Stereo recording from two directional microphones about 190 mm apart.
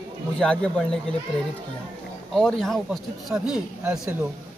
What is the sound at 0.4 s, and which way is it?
Speech, 5° left (ahead or behind).